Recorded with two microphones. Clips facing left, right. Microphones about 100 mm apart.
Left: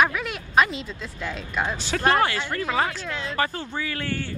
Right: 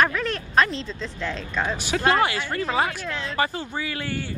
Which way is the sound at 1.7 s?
15° right (ahead or behind).